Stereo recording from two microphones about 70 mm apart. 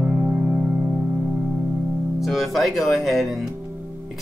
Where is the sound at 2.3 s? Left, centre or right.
Centre.